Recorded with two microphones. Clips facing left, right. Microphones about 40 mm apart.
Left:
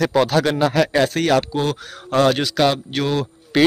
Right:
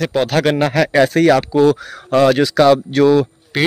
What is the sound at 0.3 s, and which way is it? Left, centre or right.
Speech, right.